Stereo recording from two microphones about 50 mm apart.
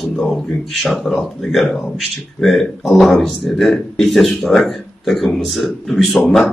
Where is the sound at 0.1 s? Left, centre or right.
Centre.